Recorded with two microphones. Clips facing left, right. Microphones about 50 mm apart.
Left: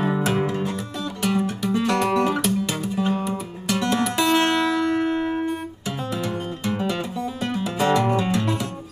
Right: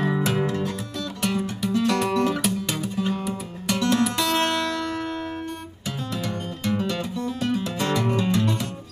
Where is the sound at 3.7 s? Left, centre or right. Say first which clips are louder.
Even; centre.